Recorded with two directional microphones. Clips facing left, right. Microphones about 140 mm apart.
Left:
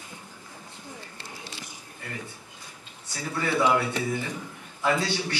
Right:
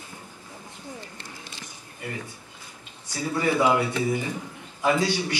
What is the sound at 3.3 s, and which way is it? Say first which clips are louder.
A man's voice: right 2 dB; 15° right (ahead or behind).